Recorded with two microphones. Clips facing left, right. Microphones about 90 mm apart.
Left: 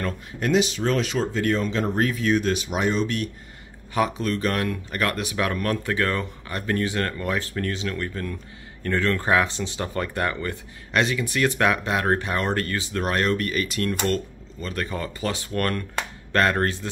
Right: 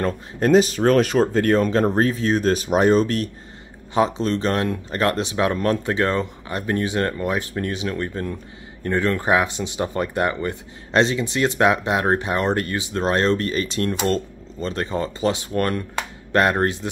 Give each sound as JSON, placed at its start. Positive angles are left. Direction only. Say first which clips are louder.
{"t": 0.0, "sound": "speech", "louder": "right 6 dB", "side_deg": -40}
{"t": 3.9, "sound": "speech", "louder": "right 4 dB", "side_deg": -25}